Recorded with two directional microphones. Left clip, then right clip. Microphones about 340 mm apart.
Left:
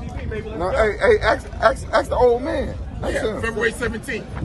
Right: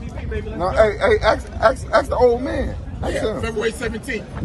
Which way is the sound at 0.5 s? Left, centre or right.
Centre.